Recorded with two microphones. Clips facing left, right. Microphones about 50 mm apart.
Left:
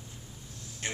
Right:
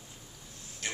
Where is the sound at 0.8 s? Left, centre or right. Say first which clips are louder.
Left 1 dB; left.